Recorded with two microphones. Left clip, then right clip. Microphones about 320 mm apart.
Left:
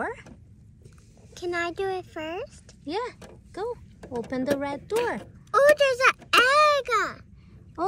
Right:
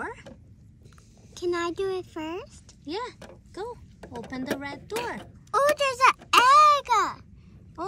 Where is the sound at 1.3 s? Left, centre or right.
Centre.